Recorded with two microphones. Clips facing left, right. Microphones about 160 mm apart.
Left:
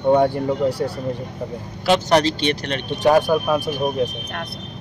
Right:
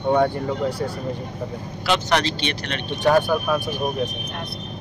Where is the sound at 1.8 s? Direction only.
40° left (ahead or behind).